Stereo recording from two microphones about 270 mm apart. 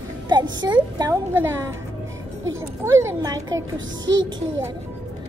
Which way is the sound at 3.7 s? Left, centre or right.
Right.